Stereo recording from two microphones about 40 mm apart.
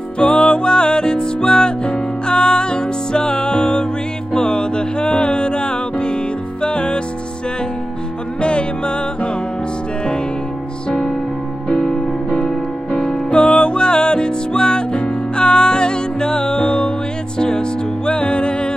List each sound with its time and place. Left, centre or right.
0.2 s music: left
8.4 s music: left
11.8 s music: centre
13.3 s music: left